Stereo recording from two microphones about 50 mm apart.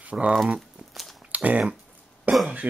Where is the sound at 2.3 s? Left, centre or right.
Right.